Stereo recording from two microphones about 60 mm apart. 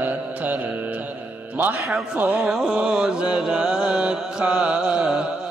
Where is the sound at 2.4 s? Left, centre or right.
Centre.